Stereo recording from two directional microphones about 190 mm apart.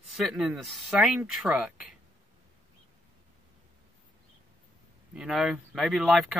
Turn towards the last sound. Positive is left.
turn(degrees=0)  # may be behind; listen again after turning